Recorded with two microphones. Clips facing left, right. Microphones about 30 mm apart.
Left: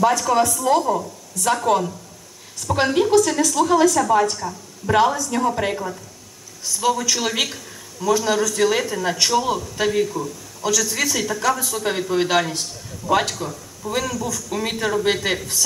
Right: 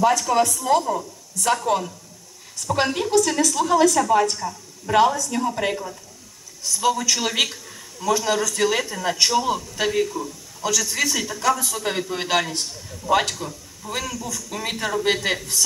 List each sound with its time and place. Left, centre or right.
0.0 s speech: centre
5.2 s speech: centre
6.7 s speech: centre
10.0 s speech: centre